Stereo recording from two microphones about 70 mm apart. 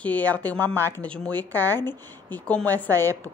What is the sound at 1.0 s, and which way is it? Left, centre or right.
A woman's voice, centre.